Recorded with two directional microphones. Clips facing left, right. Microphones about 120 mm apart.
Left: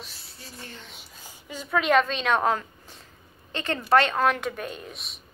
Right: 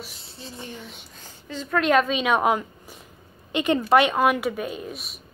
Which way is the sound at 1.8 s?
Centre (ahead or behind).